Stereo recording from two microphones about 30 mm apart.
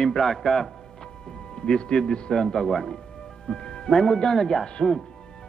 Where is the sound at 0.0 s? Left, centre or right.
Centre.